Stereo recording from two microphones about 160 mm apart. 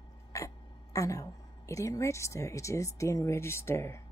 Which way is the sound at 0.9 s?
20° left (ahead or behind).